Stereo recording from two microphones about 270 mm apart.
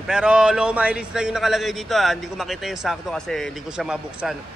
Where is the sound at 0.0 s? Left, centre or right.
Centre.